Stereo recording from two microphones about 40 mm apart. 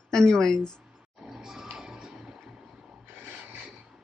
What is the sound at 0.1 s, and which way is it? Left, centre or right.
Speech, centre.